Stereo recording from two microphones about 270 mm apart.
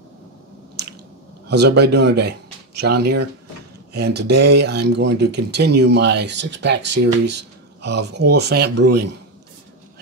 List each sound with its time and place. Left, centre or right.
1.5 s speech: right